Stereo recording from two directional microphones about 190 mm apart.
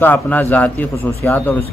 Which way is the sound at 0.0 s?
10° left (ahead or behind).